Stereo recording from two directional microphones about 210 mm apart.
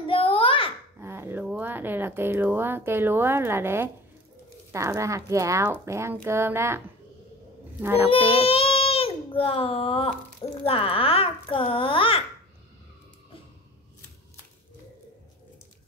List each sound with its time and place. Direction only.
0.0 s a sound: 25° left (ahead or behind)
0.9 s speech: 10° right (ahead or behind)
7.8 s speech: 10° right (ahead or behind)
8.1 s a child's voice: 25° left (ahead or behind)